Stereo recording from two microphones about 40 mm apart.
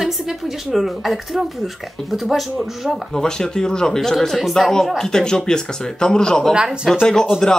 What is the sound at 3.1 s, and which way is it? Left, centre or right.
A woman's voice, centre.